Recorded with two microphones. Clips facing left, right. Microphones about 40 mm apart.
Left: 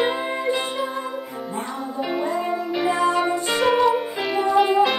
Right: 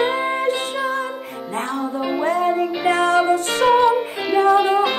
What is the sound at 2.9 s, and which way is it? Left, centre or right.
Music, right.